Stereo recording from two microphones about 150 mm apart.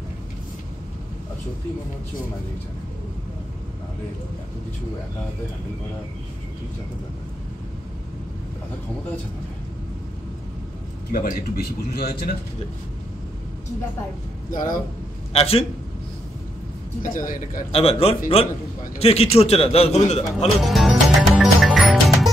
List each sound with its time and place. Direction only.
11.1 s speech: 75° left (ahead or behind)
14.5 s a man's voice: 65° left (ahead or behind)
15.3 s a man's voice: 40° left (ahead or behind)
17.0 s a man's voice: 65° left (ahead or behind)
17.7 s a man's voice: 40° left (ahead or behind)
20.6 s music: centre (ahead or behind)